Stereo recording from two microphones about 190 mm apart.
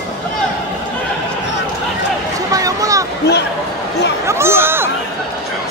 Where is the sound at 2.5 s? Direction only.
15° right (ahead or behind).